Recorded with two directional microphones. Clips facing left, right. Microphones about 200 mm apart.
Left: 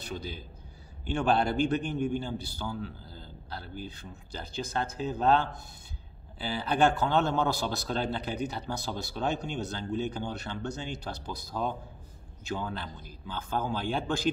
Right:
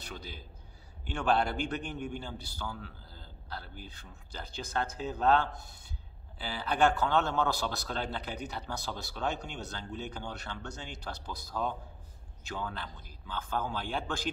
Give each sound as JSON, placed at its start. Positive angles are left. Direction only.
{"t": 0.0, "sound": "a man's voice", "side_deg": 20}